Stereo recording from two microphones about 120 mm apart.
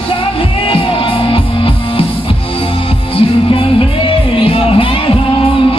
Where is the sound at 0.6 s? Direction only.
45° left (ahead or behind).